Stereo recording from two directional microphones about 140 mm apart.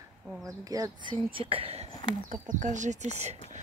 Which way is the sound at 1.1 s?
40° right (ahead or behind).